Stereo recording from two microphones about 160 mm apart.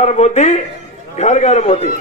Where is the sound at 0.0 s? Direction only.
45° left (ahead or behind).